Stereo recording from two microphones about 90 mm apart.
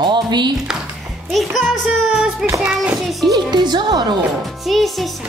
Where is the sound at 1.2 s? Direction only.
Centre (ahead or behind).